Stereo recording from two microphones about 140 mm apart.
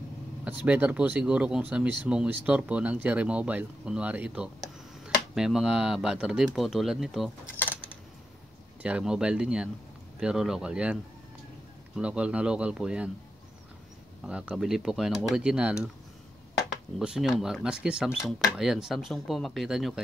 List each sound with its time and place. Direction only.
0.5 s speech: 10° right (ahead or behind)
7.5 s coin: 15° left (ahead or behind)
8.8 s speech: 5° right (ahead or behind)
14.2 s speech: 5° right (ahead or behind)
17.0 s speech: 5° right (ahead or behind)